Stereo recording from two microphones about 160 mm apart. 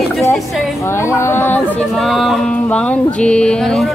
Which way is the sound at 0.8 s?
15° left (ahead or behind).